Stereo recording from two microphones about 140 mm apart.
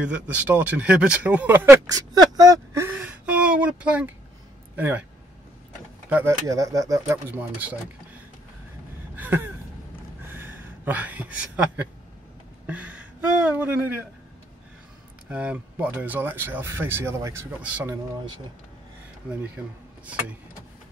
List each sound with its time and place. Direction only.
0.0 s speech: 10° right (ahead or behind)
1.9 s speech: 25° right (ahead or behind)
3.0 s a sound: 10° right (ahead or behind)
4.7 s speech: 15° right (ahead or behind)
6.0 s speech: 10° right (ahead or behind)
6.4 s speech: 25° right (ahead or behind)
9.1 s a sound: 15° right (ahead or behind)
12.6 s speech: 10° right (ahead or behind)
15.2 s speech: 10° right (ahead or behind)
19.6 s speech: 10° right (ahead or behind)